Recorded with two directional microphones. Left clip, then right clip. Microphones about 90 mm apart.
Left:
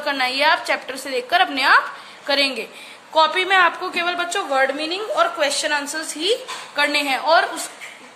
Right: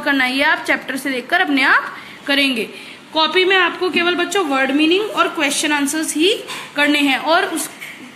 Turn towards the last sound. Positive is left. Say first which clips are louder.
# right 1 dB
turn(degrees=20)  # may be behind; listen again after turning